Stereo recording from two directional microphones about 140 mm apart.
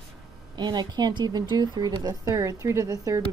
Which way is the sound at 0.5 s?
30° right (ahead or behind).